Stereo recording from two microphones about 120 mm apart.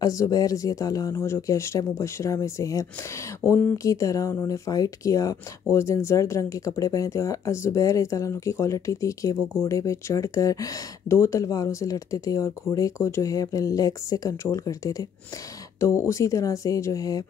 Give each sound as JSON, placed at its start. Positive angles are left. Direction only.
{"t": 0.0, "sound": "speech", "side_deg": 30}